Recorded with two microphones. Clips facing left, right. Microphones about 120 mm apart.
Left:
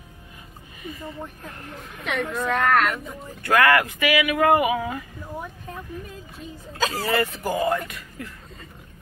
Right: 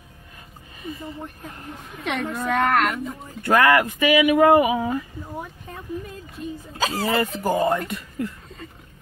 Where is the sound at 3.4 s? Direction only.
25° right (ahead or behind).